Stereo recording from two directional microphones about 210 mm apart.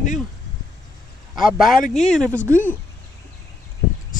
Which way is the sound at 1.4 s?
40° left (ahead or behind).